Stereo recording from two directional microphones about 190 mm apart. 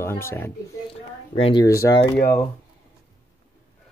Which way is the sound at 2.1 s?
55° left (ahead or behind).